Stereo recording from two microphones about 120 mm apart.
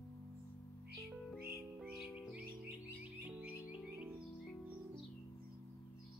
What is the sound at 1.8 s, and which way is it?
Music, 5° right (ahead or behind).